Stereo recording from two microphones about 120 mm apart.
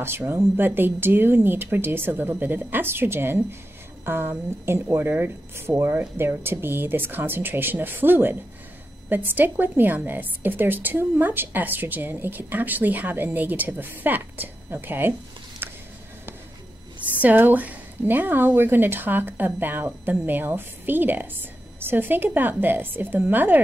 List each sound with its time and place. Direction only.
0.0 s a woman's voice: 20° right (ahead or behind)
15.6 s a sound: 20° right (ahead or behind)
17.0 s a woman's voice: 15° right (ahead or behind)